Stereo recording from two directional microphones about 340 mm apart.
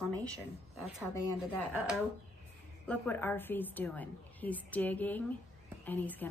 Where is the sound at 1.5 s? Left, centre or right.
Centre.